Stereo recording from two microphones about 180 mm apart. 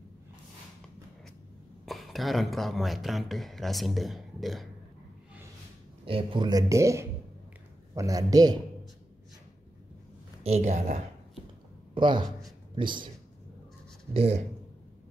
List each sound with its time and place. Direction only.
1.9 s speech: centre (ahead or behind)
6.0 s speech: 30° right (ahead or behind)
10.4 s speech: 35° right (ahead or behind)
11.9 s speech: 25° right (ahead or behind)
14.1 s speech: 35° right (ahead or behind)